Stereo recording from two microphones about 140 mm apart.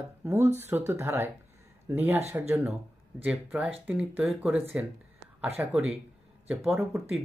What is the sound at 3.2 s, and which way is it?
Speech, 5° right (ahead or behind).